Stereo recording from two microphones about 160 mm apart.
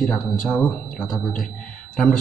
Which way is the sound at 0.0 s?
Centre (ahead or behind).